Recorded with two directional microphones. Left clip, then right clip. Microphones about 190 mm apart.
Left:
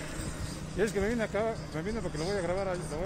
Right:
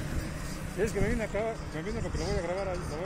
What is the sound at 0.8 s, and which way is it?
Speech, 20° left (ahead or behind).